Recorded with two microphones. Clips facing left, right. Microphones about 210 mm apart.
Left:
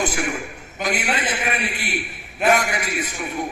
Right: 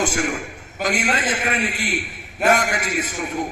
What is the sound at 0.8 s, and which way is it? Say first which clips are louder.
Speech: right 2 dB; 45° right (ahead or behind).